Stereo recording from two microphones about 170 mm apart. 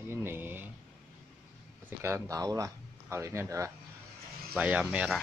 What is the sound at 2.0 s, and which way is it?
Speech, 15° right (ahead or behind).